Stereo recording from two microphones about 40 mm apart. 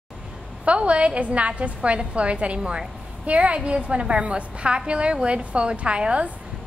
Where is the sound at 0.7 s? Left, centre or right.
Right.